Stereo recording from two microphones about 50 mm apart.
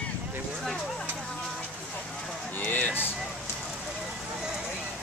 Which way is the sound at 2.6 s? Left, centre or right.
Left.